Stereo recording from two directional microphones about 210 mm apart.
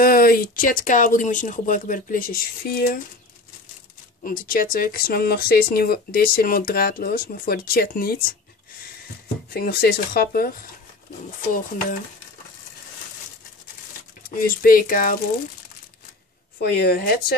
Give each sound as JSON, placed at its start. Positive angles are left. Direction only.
{"t": 0.0, "sound": "speech", "side_deg": 45}
{"t": 4.2, "sound": "speech", "side_deg": 40}
{"t": 9.5, "sound": "speech", "side_deg": 45}
{"t": 14.4, "sound": "speech", "side_deg": 45}
{"t": 16.5, "sound": "speech", "side_deg": 50}